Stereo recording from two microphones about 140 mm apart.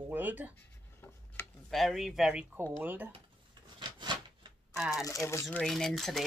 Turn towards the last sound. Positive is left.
turn(degrees=0)  # may be behind; listen again after turning